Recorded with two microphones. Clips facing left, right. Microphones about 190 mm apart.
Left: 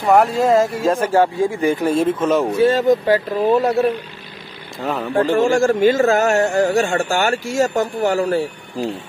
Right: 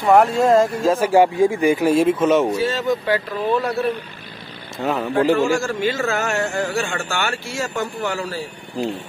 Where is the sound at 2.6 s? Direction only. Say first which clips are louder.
Left 7 dB; 50° left (ahead or behind).